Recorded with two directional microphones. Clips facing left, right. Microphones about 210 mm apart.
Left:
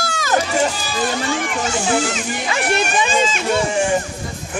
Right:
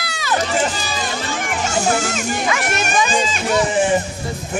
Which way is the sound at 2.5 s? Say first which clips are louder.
Left 1 dB; 30° left (ahead or behind).